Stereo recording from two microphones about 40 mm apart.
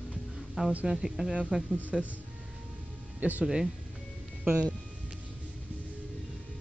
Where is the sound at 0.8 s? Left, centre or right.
Centre.